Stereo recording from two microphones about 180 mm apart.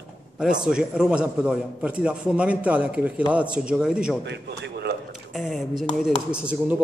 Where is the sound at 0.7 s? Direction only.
5° right (ahead or behind).